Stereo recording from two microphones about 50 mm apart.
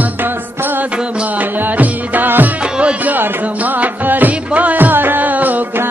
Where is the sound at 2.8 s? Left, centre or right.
Right.